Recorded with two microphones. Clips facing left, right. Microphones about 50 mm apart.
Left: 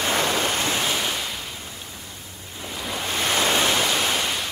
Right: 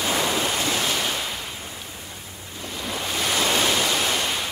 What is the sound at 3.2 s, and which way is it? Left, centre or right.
Waves, left.